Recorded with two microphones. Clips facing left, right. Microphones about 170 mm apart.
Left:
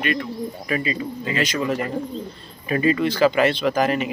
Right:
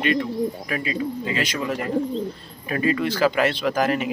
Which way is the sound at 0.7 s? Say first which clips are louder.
Left 1 dB; 5° right (ahead or behind).